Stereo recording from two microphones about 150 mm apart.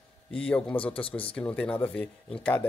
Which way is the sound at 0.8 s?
35° left (ahead or behind).